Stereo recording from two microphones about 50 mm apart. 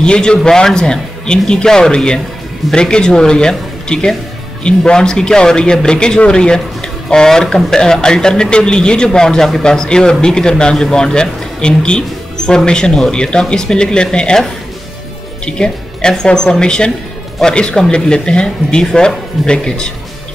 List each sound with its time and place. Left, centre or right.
0.0 s a man's voice: centre